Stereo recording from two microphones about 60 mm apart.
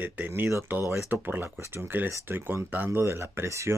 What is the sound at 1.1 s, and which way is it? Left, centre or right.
Speech, right.